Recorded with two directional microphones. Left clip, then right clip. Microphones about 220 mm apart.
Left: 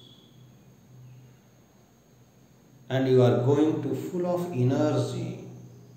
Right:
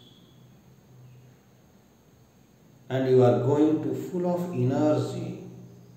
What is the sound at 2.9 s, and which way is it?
A man's voice, 5° right (ahead or behind).